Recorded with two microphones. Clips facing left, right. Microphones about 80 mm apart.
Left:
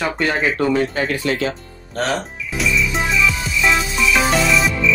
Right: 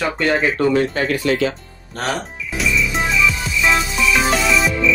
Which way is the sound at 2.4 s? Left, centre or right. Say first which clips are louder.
Right 1 dB; centre.